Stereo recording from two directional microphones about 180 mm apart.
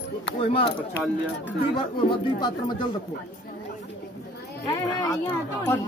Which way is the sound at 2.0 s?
25° left (ahead or behind).